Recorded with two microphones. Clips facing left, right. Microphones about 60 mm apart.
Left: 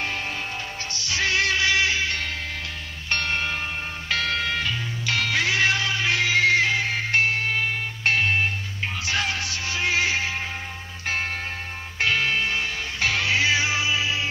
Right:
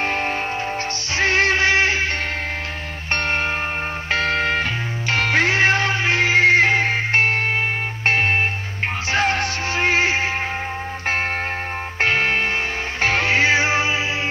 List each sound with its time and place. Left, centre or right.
0.0 s music: right
3.1 s music: right
12.0 s music: right